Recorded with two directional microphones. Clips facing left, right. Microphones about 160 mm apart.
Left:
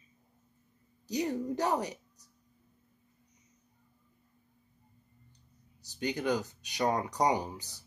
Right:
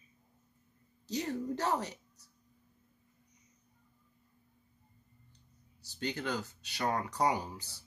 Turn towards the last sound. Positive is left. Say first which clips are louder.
# left 4 dB
turn(degrees=15)  # may be behind; listen again after turning